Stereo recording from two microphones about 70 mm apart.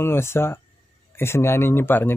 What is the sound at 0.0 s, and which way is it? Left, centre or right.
Speech, left.